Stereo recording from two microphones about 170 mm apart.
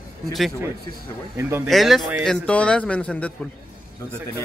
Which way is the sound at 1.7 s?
Centre (ahead or behind).